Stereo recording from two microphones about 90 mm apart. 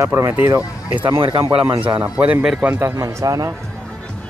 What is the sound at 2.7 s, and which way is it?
Speech, 30° right (ahead or behind).